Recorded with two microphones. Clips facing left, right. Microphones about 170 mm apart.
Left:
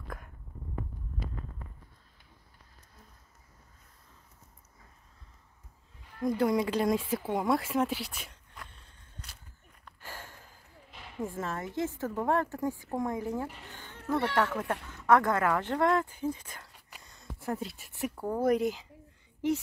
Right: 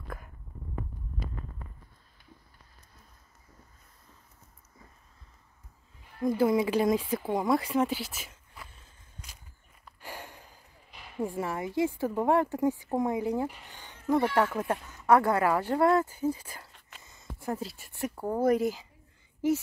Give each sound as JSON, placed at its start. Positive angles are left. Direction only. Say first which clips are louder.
{"t": 6.2, "sound": "speech", "louder": "right 2 dB", "side_deg": -5}
{"t": 9.8, "sound": "a sound", "louder": "right 3 dB", "side_deg": -15}
{"t": 11.1, "sound": "speech", "louder": "right 3 dB", "side_deg": -10}
{"t": 17.0, "sound": "a sound", "louder": "right 1 dB", "side_deg": 0}
{"t": 18.1, "sound": "speech", "louder": "right 2 dB", "side_deg": -15}
{"t": 18.4, "sound": "speech", "louder": "right 2 dB", "side_deg": 0}